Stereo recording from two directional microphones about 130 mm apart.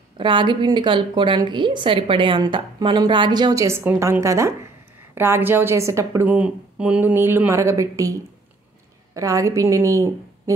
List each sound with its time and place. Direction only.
0.2 s a woman's voice: 40° right (ahead or behind)
3.6 s a woman's voice: 15° right (ahead or behind)